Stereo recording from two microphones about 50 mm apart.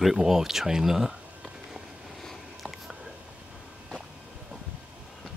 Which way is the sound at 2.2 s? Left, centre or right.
Centre.